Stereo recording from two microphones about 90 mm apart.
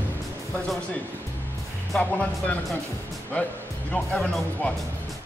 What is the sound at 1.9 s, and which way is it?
Speech, 15° left (ahead or behind).